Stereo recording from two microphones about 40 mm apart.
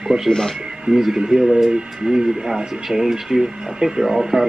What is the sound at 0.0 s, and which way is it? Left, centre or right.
Speech, centre.